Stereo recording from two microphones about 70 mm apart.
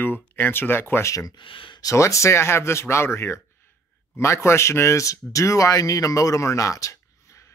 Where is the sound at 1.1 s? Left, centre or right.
Left.